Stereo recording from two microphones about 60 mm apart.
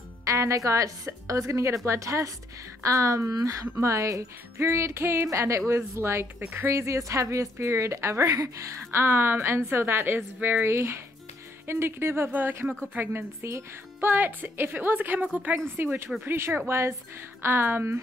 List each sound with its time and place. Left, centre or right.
0.2 s a woman's voice: right
8.3 s a woman's voice: right
8.9 s a woman's voice: right
10.7 s a woman's voice: right
13.4 s speech: right
14.0 s a woman's voice: right
16.3 s a woman's voice: right